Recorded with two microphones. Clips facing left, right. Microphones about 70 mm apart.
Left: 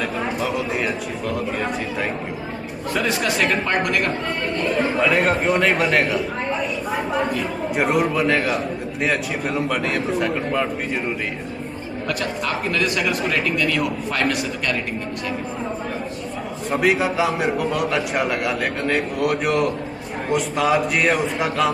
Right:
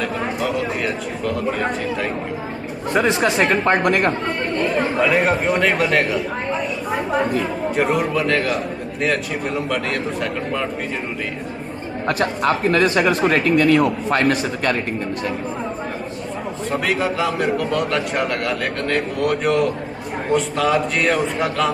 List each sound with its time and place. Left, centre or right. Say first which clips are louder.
0.4 s a man's voice: right 2 dB; centre
2.9 s speech: right 4 dB; right
4.9 s a man's voice: right 2 dB; centre
7.7 s a man's voice: even; centre
9.7 s a man's voice: even; centre
12.1 s speech: right 6 dB; right
16.7 s a man's voice: left 2 dB; centre